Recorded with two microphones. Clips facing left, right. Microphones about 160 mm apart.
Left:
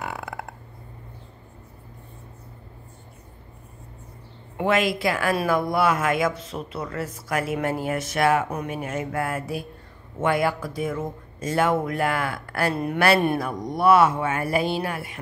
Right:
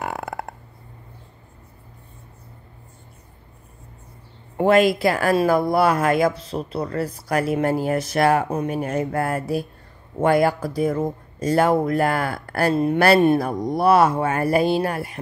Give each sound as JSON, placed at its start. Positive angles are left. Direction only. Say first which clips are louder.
{"t": 0.0, "sound": "a sound", "louder": "right 4 dB", "side_deg": -45}
{"t": 4.6, "sound": "speech", "louder": "right 6 dB", "side_deg": -40}
{"t": 12.7, "sound": "speech", "louder": "right 7 dB", "side_deg": -25}
{"t": 13.4, "sound": "speech", "louder": "right 3 dB", "side_deg": -35}